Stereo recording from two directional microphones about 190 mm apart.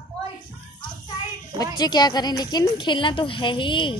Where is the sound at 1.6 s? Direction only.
20° left (ahead or behind).